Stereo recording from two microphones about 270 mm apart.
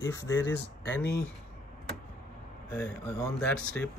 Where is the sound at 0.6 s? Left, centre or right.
Left.